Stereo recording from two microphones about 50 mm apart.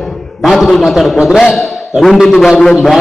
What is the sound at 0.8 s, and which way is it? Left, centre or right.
Speech, centre.